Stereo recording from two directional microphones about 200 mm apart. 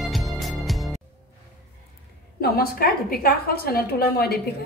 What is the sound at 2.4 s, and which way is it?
A woman's voice, 50° left (ahead or behind).